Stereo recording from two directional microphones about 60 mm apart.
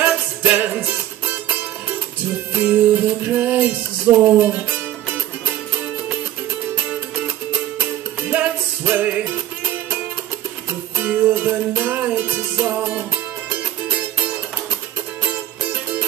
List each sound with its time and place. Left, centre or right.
0.0 s music: right
8.3 s music: right
10.7 s music: right